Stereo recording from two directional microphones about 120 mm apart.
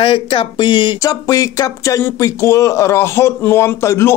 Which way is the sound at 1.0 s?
30° left (ahead or behind).